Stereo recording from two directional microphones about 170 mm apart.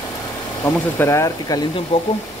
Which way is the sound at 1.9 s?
35° left (ahead or behind).